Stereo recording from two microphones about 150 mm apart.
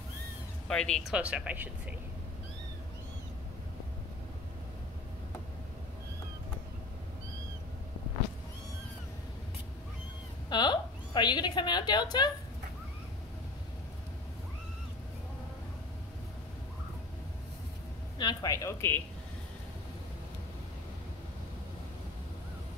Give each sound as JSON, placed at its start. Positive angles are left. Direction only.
{"t": 0.7, "sound": "speech", "side_deg": 5}
{"t": 1.1, "sound": "speech", "side_deg": -10}
{"t": 10.5, "sound": "a woman's voice", "side_deg": 30}
{"t": 18.1, "sound": "speech", "side_deg": 25}